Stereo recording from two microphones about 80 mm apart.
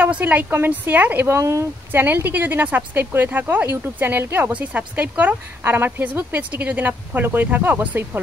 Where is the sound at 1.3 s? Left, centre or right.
Right.